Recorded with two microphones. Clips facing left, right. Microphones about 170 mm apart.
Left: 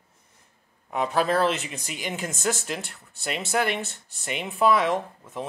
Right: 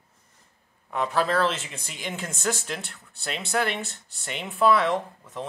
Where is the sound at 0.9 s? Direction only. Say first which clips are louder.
Left 1 dB; 15° left (ahead or behind).